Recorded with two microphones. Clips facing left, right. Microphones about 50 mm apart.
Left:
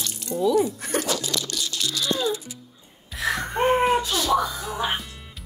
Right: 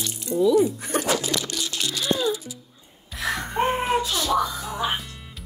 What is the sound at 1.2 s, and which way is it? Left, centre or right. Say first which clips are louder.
Music: right 1 dB; right.